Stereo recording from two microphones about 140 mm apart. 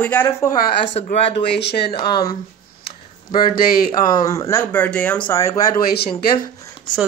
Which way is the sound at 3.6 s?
90° left.